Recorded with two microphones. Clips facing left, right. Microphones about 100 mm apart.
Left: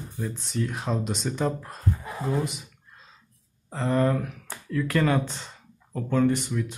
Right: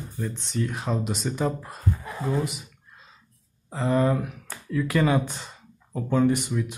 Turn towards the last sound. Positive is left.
turn(degrees=-15)  # may be behind; listen again after turning